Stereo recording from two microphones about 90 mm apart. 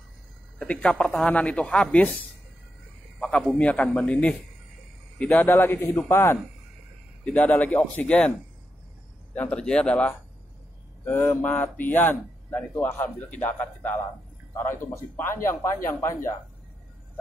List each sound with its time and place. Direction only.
0.6 s speech: 10° left (ahead or behind)
3.2 s a sound: 10° left (ahead or behind)
3.5 s a man's voice: 15° left (ahead or behind)
7.2 s speech: 15° left (ahead or behind)
9.3 s a man's voice: 15° left (ahead or behind)
15.1 s a man's voice: 30° left (ahead or behind)